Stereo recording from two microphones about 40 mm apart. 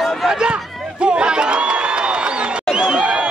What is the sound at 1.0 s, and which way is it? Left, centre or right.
Crowd, right.